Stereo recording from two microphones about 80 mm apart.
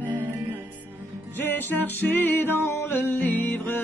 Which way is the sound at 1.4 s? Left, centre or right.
Left.